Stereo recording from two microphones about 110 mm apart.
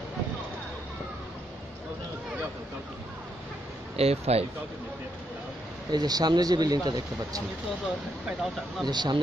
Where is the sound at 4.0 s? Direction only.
65° right (ahead or behind).